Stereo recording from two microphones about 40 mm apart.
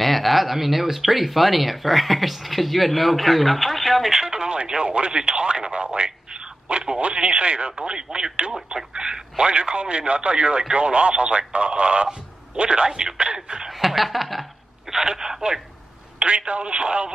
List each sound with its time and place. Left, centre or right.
0.0 s speech: centre
4.1 s speech: centre
13.7 s speech: centre
14.9 s speech: centre
16.2 s speech: right